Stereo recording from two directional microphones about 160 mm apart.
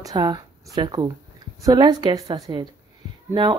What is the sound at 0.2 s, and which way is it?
Speech, 25° right (ahead or behind).